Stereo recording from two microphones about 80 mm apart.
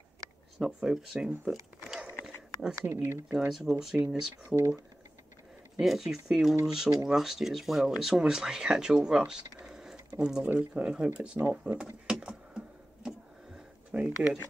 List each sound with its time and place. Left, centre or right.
0.6 s speech: centre
1.5 s a sound: centre
2.7 s speech: right
3.3 s speech: centre
4.6 s speech: right
5.8 s speech: centre
11.4 s speech: right
12.1 s a sound: centre
14.0 s speech: centre